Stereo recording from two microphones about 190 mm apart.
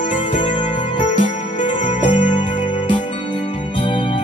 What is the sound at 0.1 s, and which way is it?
Music, 25° left (ahead or behind).